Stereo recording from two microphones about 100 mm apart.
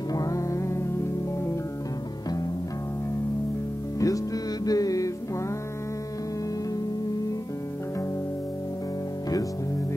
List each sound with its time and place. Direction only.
0.1 s music: 35° left (ahead or behind)
4.0 s music: 35° left (ahead or behind)